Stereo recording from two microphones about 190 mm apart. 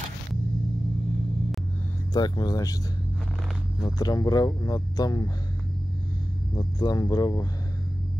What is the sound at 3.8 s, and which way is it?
Speech, 20° left (ahead or behind).